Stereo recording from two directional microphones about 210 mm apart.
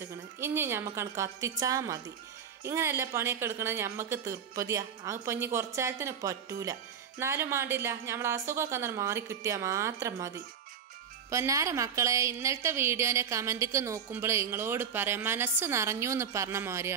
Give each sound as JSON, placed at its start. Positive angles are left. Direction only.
{"t": 0.4, "sound": "speech", "side_deg": -10}